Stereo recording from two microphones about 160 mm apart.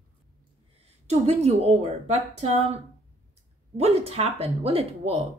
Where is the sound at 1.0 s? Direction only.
45° right (ahead or behind).